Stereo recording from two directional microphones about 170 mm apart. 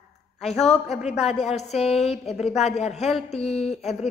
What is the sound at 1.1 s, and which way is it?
A woman's voice, 40° left (ahead or behind).